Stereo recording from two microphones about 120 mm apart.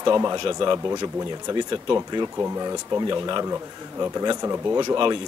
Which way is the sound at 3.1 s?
35° right (ahead or behind).